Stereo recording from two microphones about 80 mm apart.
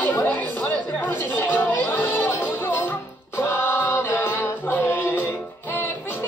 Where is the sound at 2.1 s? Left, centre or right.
Left.